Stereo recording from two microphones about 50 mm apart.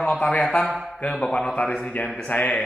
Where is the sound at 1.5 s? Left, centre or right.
Left.